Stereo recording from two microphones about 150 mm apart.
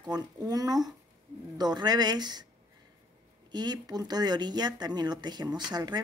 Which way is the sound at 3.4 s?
25° right (ahead or behind).